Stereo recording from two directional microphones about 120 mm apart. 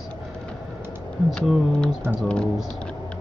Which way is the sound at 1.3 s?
Centre (ahead or behind).